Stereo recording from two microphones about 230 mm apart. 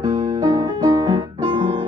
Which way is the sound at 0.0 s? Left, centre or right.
Centre.